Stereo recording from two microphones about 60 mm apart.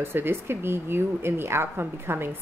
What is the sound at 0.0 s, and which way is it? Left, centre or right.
A woman's voice, right.